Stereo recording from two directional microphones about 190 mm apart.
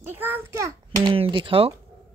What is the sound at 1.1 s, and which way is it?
Speech, 25° right (ahead or behind).